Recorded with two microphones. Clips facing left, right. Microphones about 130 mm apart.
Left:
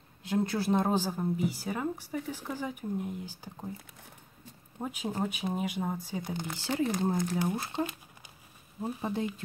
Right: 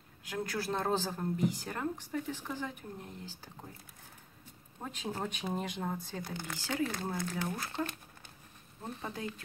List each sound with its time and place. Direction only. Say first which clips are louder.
0.2 s a woman's voice: left 7 dB; 25° left (ahead or behind); by 3.3 s 10° left (ahead or behind)
4.8 s a woman's voice: left 5 dB; 10° left (ahead or behind)
9.0 s speech: left 7 dB; 20° left (ahead or behind)